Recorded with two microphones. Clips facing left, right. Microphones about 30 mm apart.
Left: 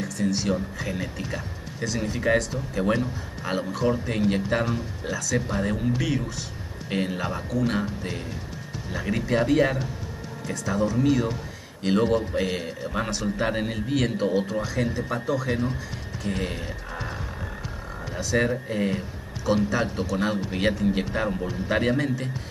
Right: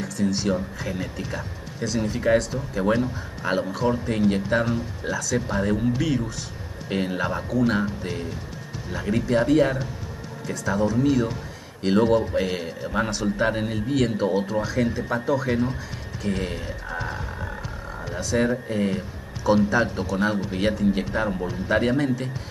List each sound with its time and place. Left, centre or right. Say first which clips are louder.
0.0 s speech: right 1 dB; centre
18.1 s speech: right 1 dB; centre